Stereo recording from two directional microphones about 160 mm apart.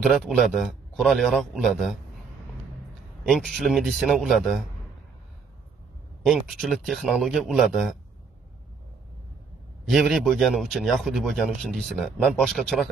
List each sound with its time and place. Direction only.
0.0 s speech: centre (ahead or behind)
3.3 s speech: centre (ahead or behind)
6.2 s speech: centre (ahead or behind)
9.8 s speech: centre (ahead or behind)